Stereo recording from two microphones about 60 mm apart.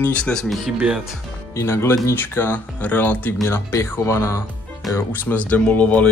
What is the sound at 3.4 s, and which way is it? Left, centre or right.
Speech, left.